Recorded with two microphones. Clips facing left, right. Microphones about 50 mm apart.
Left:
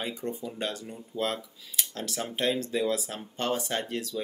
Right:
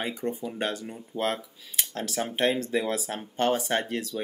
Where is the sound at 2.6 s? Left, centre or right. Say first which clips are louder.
Right 1 dB; right.